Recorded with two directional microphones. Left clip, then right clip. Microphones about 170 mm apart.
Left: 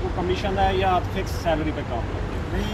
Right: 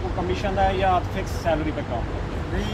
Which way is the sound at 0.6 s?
20° right (ahead or behind).